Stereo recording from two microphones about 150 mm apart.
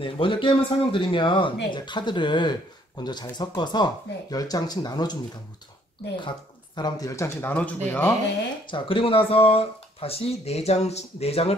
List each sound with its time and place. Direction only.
0.0 s speech: 35° left (ahead or behind); by 8.1 s 10° left (ahead or behind)
8.6 s speech: 35° left (ahead or behind)